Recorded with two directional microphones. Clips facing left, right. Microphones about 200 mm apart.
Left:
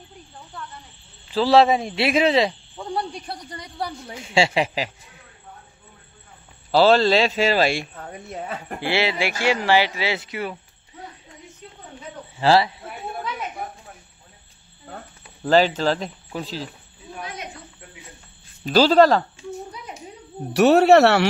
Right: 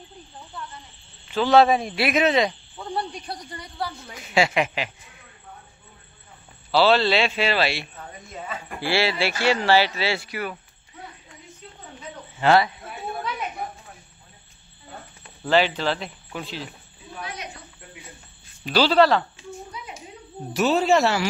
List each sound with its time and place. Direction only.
1.3 s speech: 30° left (ahead or behind)
3.4 s speech: 15° left (ahead or behind)
4.1 s speech: 30° left (ahead or behind)
6.7 s a man's voice: 45° left (ahead or behind); by 8.5 s 60° left (ahead or behind)
8.8 s speech: 20° left (ahead or behind)
12.4 s speech: 30° left (ahead or behind)
15.4 s speech: 40° left (ahead or behind)
18.7 s a man's voice: 45° left (ahead or behind)
20.5 s speech: 65° left (ahead or behind)